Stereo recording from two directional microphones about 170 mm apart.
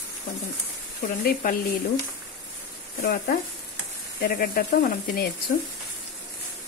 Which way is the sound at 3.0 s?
55° left (ahead or behind).